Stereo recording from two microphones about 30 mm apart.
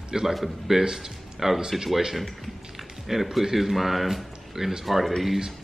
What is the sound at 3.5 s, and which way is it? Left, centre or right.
Speech, centre.